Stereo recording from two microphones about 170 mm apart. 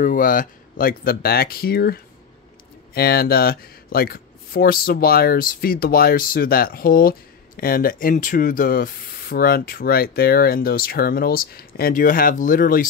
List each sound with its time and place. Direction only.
0.0 s speech: 55° left (ahead or behind)